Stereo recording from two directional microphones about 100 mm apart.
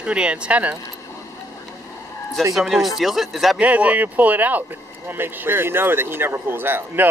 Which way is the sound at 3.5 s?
15° right (ahead or behind).